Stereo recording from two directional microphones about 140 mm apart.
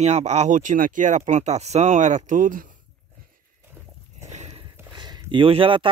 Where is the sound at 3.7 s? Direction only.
20° right (ahead or behind).